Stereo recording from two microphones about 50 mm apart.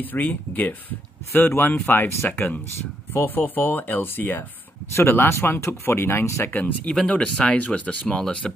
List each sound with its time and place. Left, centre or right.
0.0 s speech: left
1.3 s speech: left
6.6 s speech: left
8.4 s speech: centre